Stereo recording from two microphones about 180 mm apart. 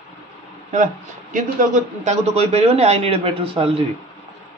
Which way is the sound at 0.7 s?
45° right (ahead or behind).